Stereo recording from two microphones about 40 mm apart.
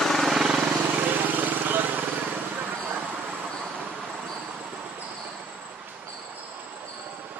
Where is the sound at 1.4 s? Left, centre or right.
Right.